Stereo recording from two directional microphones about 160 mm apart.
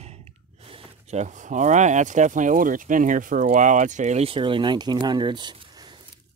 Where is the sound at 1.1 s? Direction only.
50° right (ahead or behind).